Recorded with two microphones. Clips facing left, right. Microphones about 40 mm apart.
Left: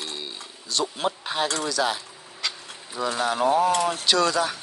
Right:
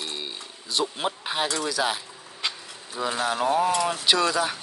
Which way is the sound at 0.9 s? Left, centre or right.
Centre.